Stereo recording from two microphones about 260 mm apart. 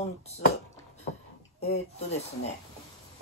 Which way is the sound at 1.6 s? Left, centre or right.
Left.